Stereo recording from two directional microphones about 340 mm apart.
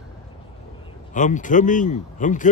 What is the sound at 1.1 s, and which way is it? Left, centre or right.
Speech, left.